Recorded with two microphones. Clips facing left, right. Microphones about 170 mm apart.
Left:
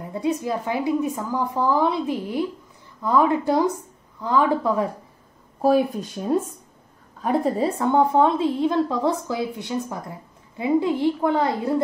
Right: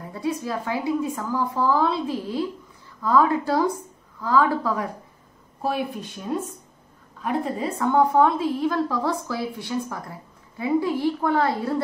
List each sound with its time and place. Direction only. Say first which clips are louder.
0.1 s a woman's voice: left 3 dB; 20° left (ahead or behind)
5.6 s a woman's voice: left 8 dB; 40° left (ahead or behind); by 11.7 s 20° left (ahead or behind)